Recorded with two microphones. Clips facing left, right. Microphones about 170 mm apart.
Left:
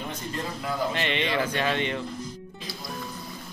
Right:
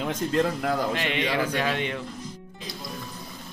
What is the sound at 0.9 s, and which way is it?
Speech, 5° right (ahead or behind).